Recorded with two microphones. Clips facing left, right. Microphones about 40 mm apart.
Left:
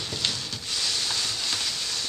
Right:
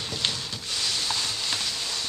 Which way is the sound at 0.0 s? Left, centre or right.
Centre.